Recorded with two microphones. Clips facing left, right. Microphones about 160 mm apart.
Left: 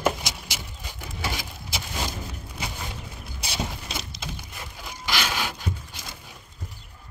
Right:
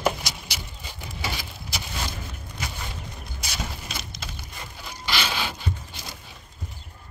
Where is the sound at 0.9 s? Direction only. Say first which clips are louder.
Left 1 dB; 15° left (ahead or behind).